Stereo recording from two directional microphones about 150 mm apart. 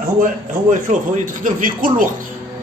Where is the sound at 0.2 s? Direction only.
60° right (ahead or behind).